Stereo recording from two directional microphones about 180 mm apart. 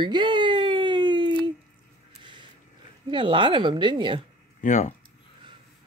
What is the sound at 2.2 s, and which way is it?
Mechanisms, 25° right (ahead or behind).